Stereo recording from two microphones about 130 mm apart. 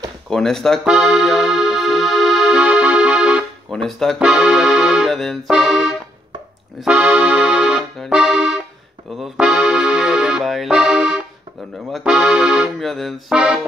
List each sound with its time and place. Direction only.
0.3 s music: 5° left (ahead or behind)
3.7 s speech: centre (ahead or behind)
6.8 s accordion: 10° right (ahead or behind)
9.1 s music: 5° right (ahead or behind)
11.9 s speech: 5° right (ahead or behind)